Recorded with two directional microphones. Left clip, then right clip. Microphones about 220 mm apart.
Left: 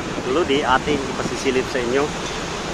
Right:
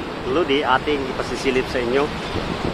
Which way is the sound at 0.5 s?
Centre (ahead or behind).